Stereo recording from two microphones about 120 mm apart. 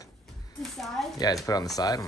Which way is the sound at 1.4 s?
30° left (ahead or behind).